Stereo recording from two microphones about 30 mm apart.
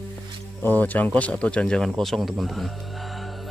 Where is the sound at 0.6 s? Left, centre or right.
Left.